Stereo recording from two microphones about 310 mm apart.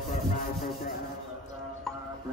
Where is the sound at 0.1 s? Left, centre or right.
Left.